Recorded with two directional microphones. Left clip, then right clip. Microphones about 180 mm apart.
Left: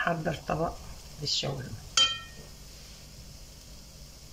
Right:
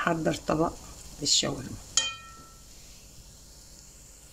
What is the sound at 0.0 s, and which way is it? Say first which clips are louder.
Speech: right 3 dB; 60° right (ahead or behind).